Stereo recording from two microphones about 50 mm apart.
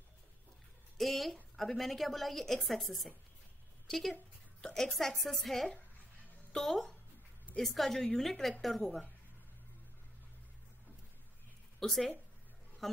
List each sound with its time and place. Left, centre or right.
0.9 s a woman's voice: centre
11.8 s speech: centre